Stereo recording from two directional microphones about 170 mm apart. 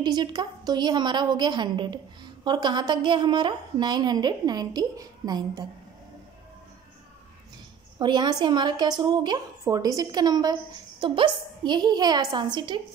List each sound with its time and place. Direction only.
0.0 s a woman's voice: 25° right (ahead or behind)
8.0 s a woman's voice: 25° right (ahead or behind)